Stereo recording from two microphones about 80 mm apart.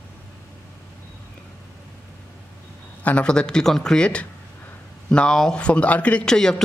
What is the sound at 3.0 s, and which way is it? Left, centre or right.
A man's voice, centre.